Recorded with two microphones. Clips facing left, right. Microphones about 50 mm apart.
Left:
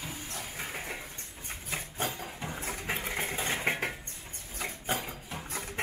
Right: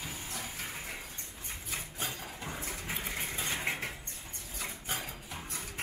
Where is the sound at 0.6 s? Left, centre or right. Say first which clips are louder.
Left 4 dB; left.